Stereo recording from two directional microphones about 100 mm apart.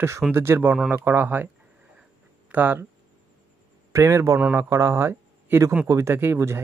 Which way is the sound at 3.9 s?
30° right (ahead or behind).